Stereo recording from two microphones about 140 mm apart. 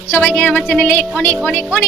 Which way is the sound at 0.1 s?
10° left (ahead or behind).